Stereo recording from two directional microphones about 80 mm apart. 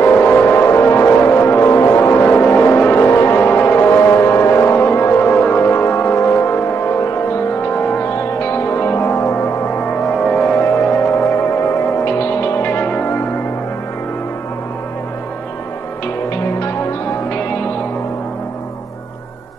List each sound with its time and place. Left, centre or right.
0.0 s music: left
7.6 s music: centre
17.3 s music: left